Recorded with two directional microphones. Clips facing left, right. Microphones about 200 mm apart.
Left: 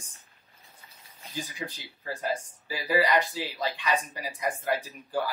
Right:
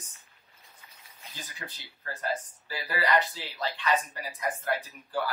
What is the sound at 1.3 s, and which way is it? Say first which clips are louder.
Speech: left 9 dB; 10° left (ahead or behind).